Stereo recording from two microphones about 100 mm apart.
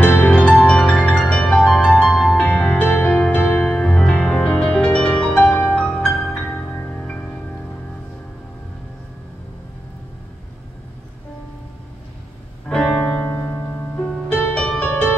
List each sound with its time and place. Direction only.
0.0 s music: 10° left (ahead or behind)
12.6 s piano: 5° left (ahead or behind)
14.0 s music: 10° left (ahead or behind)